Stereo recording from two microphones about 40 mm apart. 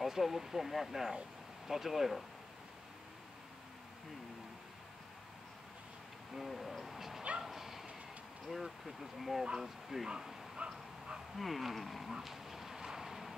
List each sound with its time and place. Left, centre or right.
0.0 s speech: centre
6.3 s hoot: centre
7.4 s bow-wow: centre
8.5 s speech: centre
10.6 s dog: right
11.3 s speech: centre
12.1 s a sound: centre